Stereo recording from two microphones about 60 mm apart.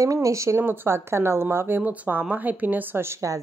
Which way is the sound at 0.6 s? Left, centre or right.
Right.